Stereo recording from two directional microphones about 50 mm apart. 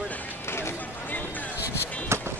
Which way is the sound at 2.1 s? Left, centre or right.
Right.